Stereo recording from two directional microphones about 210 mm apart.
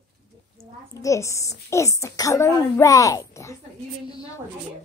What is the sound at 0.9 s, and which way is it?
A woman's voice, 15° left (ahead or behind).